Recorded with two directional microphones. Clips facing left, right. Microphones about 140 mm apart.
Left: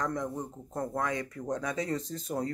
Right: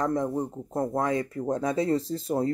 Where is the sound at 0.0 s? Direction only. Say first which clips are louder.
Right 7 dB; 30° right (ahead or behind).